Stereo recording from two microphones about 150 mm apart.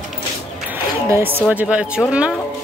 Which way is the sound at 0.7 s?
15° right (ahead or behind).